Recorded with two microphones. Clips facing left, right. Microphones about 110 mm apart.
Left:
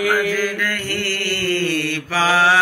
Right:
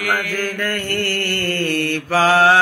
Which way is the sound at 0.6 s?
50° right (ahead or behind).